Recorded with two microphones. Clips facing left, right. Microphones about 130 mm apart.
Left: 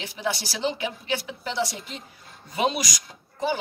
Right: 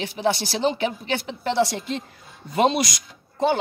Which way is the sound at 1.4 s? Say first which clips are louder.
Right 7 dB; 60° right (ahead or behind).